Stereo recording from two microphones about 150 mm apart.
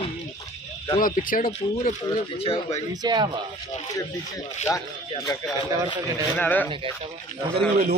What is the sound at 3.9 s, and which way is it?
Speech, 25° left (ahead or behind).